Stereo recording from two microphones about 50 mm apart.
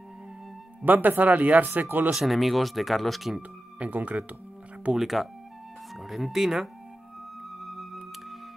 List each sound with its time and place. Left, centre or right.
0.8 s speech: right
2.1 s speech: centre
3.8 s speech: right
4.9 s speech: centre
7.6 s music: centre